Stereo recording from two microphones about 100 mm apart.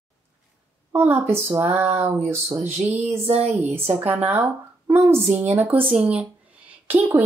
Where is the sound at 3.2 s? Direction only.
90° right.